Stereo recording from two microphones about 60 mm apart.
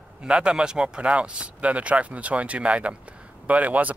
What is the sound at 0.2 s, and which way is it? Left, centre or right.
Speech, centre.